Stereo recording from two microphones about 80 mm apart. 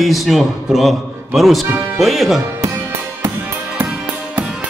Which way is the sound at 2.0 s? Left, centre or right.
Centre.